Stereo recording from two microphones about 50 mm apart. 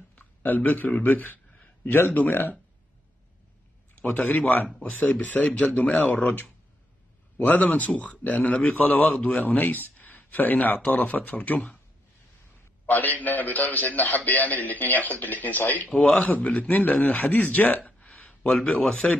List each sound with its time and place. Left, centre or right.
0.2 s a man's voice: left
4.0 s a man's voice: left
6.2 s a man's voice: left
12.8 s a man's voice: left
16.0 s a man's voice: centre
16.3 s a man's voice: left
18.0 s a sound: left
18.4 s speech: centre